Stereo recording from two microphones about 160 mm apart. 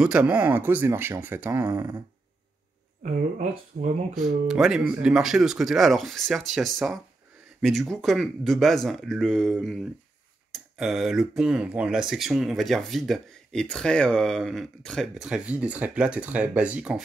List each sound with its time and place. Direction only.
0.0 s speech: 5° right (ahead or behind)
3.0 s speech: 50° right (ahead or behind)
4.1 s speech: centre (ahead or behind)